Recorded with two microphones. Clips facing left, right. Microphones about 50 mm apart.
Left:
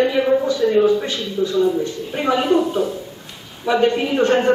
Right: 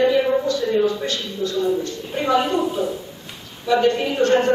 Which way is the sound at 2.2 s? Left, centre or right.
Centre.